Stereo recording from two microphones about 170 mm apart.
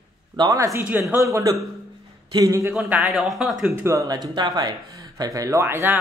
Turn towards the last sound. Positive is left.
turn(degrees=-10)  # may be behind; listen again after turning